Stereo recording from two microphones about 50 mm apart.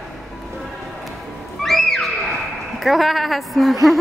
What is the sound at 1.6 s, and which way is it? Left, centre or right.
Music, centre.